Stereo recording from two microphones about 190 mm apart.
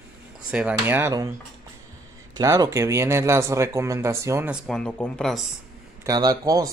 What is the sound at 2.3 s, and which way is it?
Speech, 20° right (ahead or behind).